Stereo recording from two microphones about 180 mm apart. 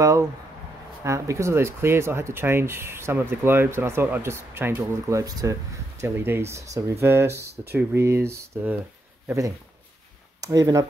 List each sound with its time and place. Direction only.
1.0 s speech: 15° right (ahead or behind)
7.3 s speech: 65° right (ahead or behind)
7.7 s speech: 15° right (ahead or behind)
10.4 s speech: 20° right (ahead or behind)